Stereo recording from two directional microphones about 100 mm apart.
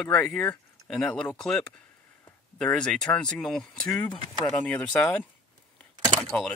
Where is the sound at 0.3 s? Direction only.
10° left (ahead or behind).